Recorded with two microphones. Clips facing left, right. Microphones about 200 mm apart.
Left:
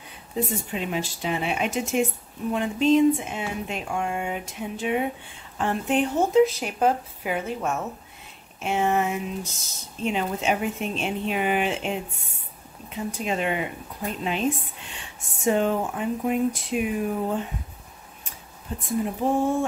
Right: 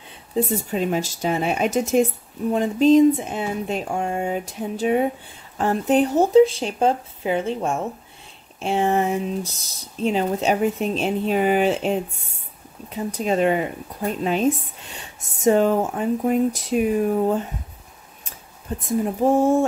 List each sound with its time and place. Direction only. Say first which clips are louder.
0.5 s speech: right 6 dB; 40° right (ahead or behind)